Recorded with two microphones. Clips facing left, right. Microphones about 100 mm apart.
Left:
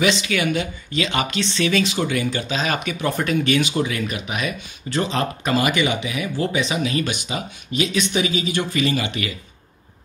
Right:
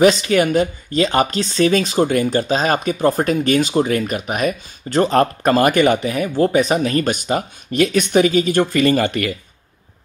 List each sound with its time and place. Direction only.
0.0 s speech: 40° right (ahead or behind)